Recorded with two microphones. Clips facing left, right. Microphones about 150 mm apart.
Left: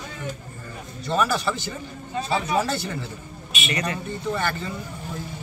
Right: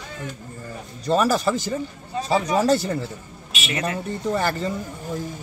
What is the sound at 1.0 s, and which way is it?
Speech, 40° right (ahead or behind).